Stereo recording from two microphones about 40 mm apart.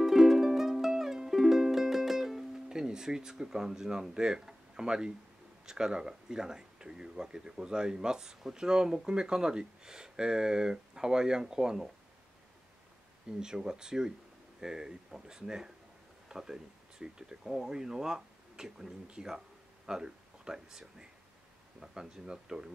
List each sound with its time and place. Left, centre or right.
0.0 s music: centre
5.7 s speech: centre
13.4 s speech: centre
16.3 s a sound: centre
17.0 s speech: centre